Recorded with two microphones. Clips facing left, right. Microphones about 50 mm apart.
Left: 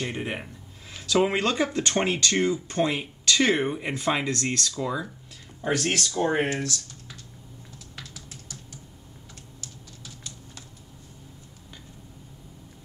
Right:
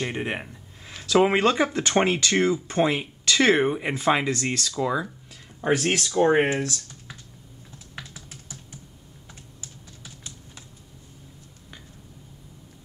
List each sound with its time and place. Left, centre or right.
0.0 s speech: centre
7.9 s typing: right
9.6 s typing: right